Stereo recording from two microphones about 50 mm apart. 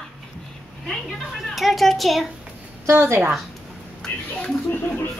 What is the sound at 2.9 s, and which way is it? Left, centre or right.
Speech, right.